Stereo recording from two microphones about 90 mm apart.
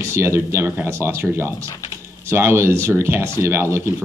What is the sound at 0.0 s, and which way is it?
Speech, 30° right (ahead or behind).